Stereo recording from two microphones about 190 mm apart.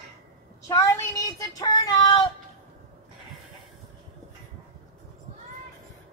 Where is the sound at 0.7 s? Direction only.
15° left (ahead or behind).